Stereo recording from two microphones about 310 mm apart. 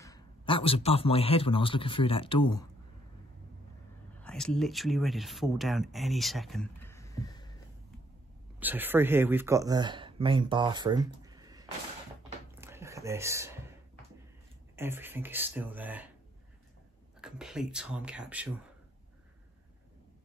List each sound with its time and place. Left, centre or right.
0.0 s a man's voice: centre
4.2 s speech: centre
8.5 s speech: centre
12.4 s a sound: centre
14.8 s speech: centre
17.2 s speech: centre